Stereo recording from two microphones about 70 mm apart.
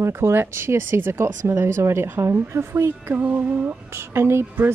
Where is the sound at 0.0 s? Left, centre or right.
Right.